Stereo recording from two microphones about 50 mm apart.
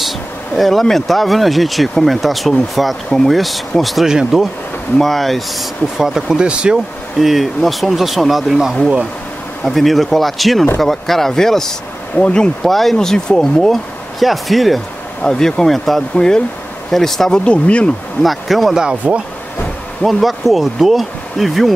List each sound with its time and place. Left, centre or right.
0.6 s speech: centre
4.1 s speech: centre
4.9 s speech: centre
7.2 s speech: centre
12.2 s speech: left
12.6 s speech: centre
15.2 s speech: centre
16.2 s speech: centre
17.5 s speech: left
18.2 s speech: centre
19.0 s speech: right
20.1 s speech: centre